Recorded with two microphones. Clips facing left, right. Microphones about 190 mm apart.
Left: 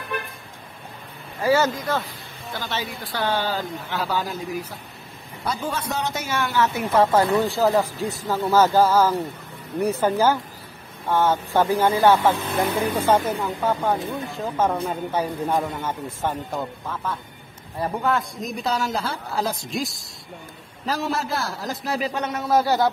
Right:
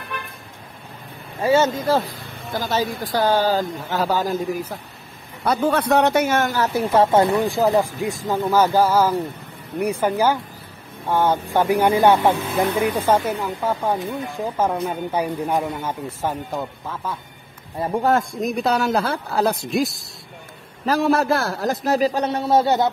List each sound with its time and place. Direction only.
1.4 s speech: 25° right (ahead or behind)
2.5 s a man's voice: 40° right (ahead or behind)
5.4 s a man's voice: 60° right (ahead or behind); by 12.4 s 20° right (ahead or behind)
12.7 s speech: 10° right (ahead or behind)
17.8 s speech: 25° right (ahead or behind)
18.4 s a man's voice: 65° right (ahead or behind); by 22.8 s 25° right (ahead or behind)